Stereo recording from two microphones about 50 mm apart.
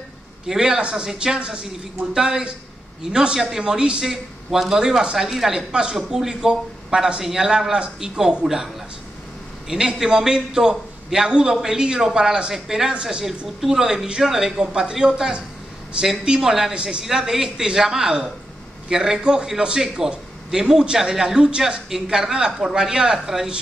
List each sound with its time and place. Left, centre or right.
0.5 s a man's voice: centre
9.7 s a man's voice: centre